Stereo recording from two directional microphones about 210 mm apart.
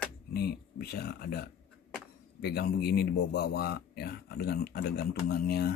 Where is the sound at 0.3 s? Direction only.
50° left (ahead or behind).